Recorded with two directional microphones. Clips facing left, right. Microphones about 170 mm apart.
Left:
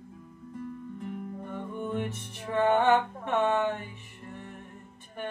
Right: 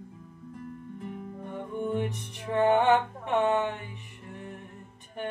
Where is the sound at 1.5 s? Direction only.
15° right (ahead or behind).